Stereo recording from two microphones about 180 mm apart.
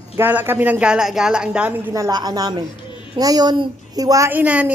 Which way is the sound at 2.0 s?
20° right (ahead or behind).